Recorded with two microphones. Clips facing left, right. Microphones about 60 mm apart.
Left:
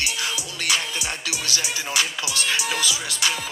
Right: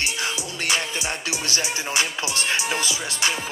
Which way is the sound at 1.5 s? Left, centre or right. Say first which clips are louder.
Right 1 dB; right.